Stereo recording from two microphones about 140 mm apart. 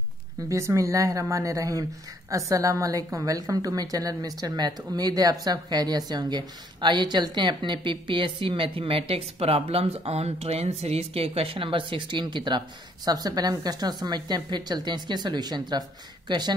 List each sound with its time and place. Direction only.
0.5 s speech: 20° right (ahead or behind)